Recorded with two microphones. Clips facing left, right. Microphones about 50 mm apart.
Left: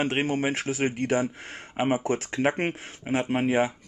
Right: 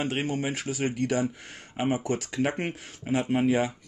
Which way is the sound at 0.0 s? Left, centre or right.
Left.